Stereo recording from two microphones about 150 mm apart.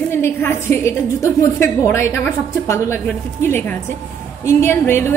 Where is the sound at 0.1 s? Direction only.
15° left (ahead or behind).